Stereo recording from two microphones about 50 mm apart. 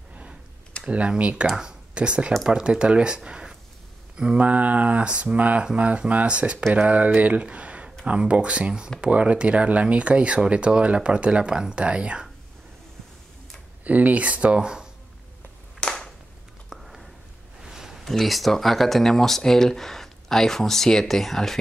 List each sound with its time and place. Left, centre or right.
0.8 s speech: right
3.3 s a sound: centre
4.4 s speech: right
13.8 s speech: right
16.6 s a sound: centre
18.0 s speech: centre